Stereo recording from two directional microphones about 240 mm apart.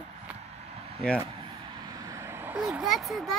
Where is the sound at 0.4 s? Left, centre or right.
Right.